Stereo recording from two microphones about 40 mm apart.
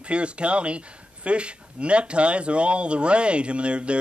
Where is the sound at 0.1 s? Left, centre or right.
Right.